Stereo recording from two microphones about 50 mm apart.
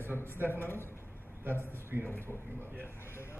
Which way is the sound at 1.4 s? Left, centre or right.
Right.